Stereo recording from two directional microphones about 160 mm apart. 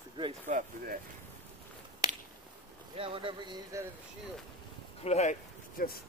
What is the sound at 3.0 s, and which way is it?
Speech, 35° right (ahead or behind).